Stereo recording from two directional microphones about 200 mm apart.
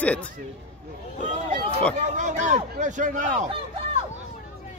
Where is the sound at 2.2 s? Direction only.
35° right (ahead or behind).